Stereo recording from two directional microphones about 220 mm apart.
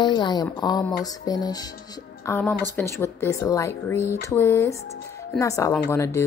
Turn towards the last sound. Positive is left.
turn(degrees=15)  # may be behind; listen again after turning